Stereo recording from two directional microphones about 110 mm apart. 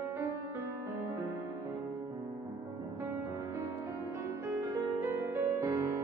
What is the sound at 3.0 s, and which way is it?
Music, 25° right (ahead or behind).